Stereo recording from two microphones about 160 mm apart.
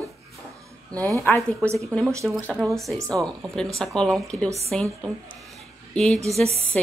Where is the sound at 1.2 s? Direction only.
10° left (ahead or behind).